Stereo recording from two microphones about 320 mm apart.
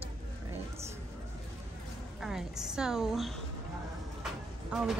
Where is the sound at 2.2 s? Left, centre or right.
Centre.